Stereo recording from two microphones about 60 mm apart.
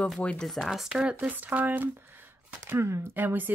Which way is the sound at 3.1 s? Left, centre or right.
Right.